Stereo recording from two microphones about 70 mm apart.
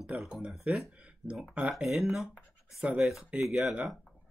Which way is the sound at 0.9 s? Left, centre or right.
Centre.